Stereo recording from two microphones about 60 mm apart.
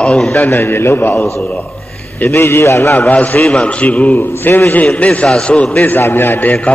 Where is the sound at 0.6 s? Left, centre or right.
Left.